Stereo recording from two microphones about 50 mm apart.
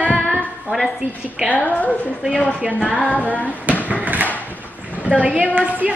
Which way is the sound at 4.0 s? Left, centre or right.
Right.